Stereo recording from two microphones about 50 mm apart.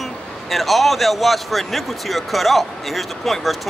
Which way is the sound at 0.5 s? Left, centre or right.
Centre.